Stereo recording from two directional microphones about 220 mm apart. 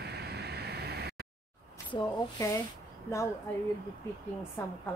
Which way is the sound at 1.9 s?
20° left (ahead or behind).